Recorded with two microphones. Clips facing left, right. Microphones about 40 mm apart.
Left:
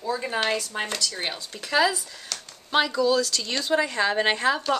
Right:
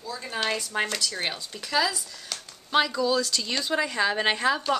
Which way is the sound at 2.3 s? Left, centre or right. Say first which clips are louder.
Left 1 dB; centre.